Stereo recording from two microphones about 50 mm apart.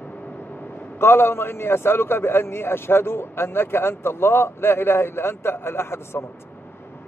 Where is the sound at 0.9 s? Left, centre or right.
Left.